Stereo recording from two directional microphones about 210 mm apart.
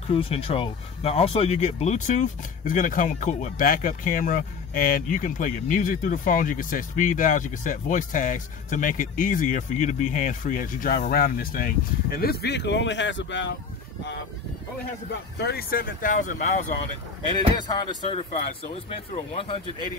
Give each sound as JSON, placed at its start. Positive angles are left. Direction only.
{"t": 0.1, "sound": "speech", "side_deg": 25}
{"t": 15.0, "sound": "speech", "side_deg": 50}
{"t": 17.6, "sound": "speech", "side_deg": 20}